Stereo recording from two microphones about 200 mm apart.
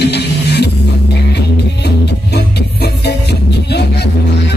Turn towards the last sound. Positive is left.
turn(degrees=55)  # may be behind; listen again after turning